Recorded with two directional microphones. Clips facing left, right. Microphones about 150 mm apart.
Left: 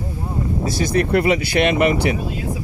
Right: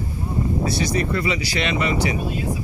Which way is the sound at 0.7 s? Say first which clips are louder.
Left 5 dB; 55° left (ahead or behind).